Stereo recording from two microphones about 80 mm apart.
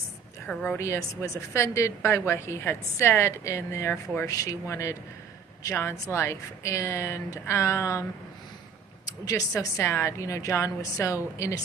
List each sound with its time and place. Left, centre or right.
0.5 s a woman's voice: centre
0.7 s a woman's voice: left
3.9 s speech: left
4.3 s a woman's voice: left
9.5 s a woman's voice: left